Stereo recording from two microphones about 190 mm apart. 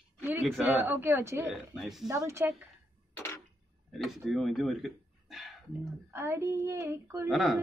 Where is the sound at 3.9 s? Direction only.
Centre (ahead or behind).